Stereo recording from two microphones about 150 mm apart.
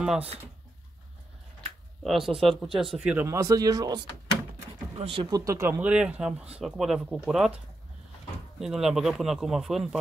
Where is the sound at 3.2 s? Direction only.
20° right (ahead or behind).